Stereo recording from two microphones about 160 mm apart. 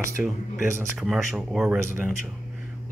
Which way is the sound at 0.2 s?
10° right (ahead or behind).